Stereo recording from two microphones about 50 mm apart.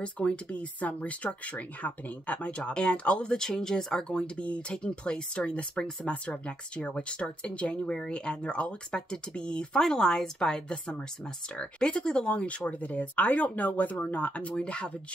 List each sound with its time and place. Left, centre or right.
0.0 s speech: left
3.3 s speech: centre